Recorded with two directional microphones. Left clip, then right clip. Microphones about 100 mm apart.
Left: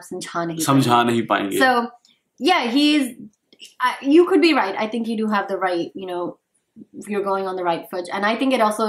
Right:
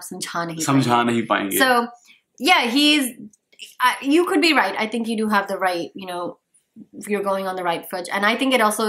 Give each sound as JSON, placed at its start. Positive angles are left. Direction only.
{"t": 0.1, "sound": "a woman's voice", "side_deg": -15}
{"t": 0.6, "sound": "speech", "side_deg": 10}
{"t": 1.6, "sound": "a woman's voice", "side_deg": -15}